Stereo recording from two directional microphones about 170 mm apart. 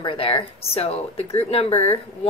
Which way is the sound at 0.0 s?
30° left (ahead or behind).